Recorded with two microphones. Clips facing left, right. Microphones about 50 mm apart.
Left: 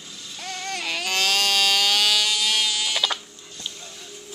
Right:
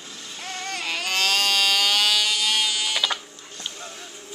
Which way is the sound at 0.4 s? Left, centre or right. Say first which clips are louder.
Left 1 dB; centre.